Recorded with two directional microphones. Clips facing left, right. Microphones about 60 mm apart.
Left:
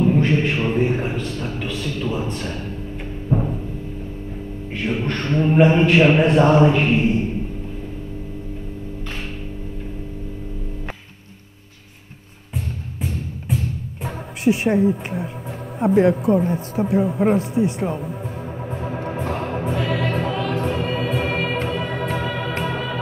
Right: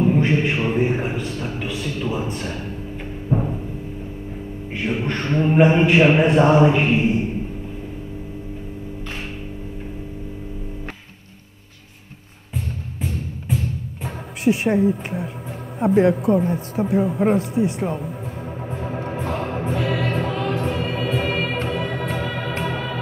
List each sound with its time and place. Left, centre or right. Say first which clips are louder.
0.0 s a man's voice: even; centre
3.3 s timpani: left 1 dB; centre
4.7 s speech: even; centre
12.5 s music: even; right
14.4 s a woman's voice: left 1 dB; centre
18.7 s music: left 1 dB; left